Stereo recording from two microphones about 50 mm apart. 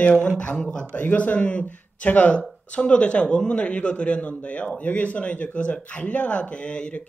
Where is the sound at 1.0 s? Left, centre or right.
Left.